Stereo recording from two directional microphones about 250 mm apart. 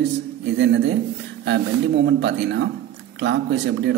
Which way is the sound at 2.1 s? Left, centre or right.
Right.